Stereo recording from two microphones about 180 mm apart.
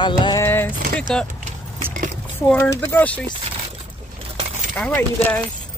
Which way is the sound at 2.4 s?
15° left (ahead or behind).